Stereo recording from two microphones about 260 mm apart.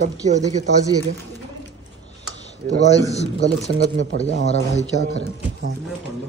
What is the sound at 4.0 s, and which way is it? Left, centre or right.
Speech, left.